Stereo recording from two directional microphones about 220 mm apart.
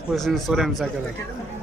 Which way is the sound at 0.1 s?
Centre (ahead or behind).